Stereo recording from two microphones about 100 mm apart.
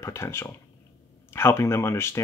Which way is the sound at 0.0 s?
30° left (ahead or behind).